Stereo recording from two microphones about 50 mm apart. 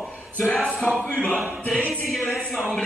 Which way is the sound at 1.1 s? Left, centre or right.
Left.